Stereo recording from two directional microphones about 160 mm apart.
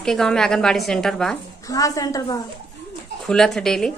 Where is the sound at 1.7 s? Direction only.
20° left (ahead or behind).